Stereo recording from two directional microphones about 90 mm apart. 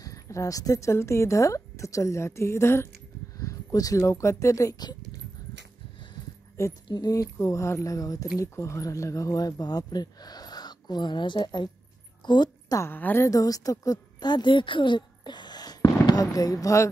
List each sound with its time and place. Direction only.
0.0 s a woman's voice: 40° left (ahead or behind)
3.3 s speech: 40° left (ahead or behind)
4.7 s a sound: 50° left (ahead or behind)
6.6 s speech: 35° left (ahead or behind)
6.9 s a woman's voice: 45° left (ahead or behind)
12.9 s a woman's voice: 20° left (ahead or behind)
13.2 s a woman's voice: 40° left (ahead or behind)